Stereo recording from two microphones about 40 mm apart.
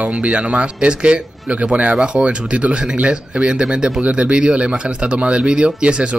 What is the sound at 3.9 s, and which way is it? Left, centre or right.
A man's voice, right.